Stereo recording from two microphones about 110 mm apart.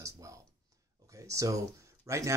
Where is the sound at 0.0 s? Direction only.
30° right (ahead or behind).